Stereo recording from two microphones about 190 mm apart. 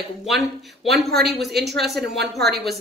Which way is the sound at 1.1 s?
60° right (ahead or behind).